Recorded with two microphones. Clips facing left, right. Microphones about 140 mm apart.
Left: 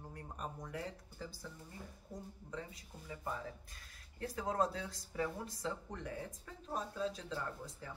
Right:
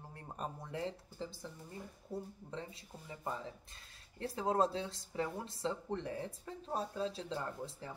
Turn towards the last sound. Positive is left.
turn(degrees=-30)  # may be behind; listen again after turning